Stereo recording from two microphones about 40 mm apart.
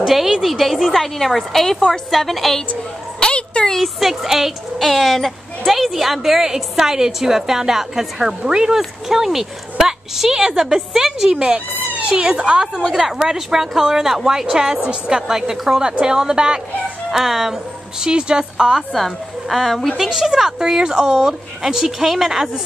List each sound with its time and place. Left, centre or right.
0.0 s a woman's voice: centre
3.2 s a sound: left
3.7 s a woman's voice: centre
4.7 s a woman's voice: centre; by 16.6 s right
17.1 s a woman's voice: centre
18.0 s a woman's voice: right
18.8 s a woman's voice: centre